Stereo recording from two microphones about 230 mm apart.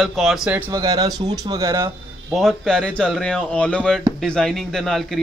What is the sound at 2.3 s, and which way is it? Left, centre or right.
A man's voice, centre.